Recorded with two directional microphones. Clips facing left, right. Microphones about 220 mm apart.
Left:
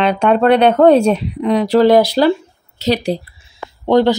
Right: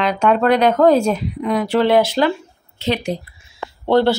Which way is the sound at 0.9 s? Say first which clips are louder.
Left 4 dB; 65° left (ahead or behind).